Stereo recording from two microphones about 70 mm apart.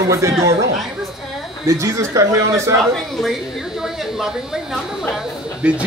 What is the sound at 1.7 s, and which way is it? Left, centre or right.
A man's voice, right.